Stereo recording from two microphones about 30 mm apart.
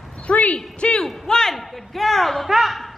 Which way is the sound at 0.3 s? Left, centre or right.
Left.